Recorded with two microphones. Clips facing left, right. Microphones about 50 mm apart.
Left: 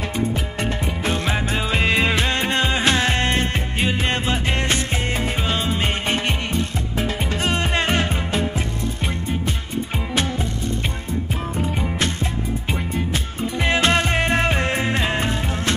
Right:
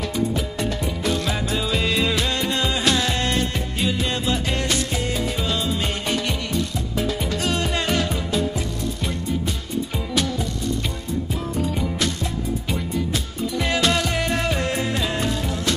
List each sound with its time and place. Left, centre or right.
0.1 s music: left
11.5 s music: left